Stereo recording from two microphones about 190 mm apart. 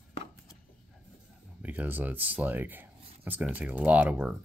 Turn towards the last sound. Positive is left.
turn(degrees=-10)  # may be behind; listen again after turning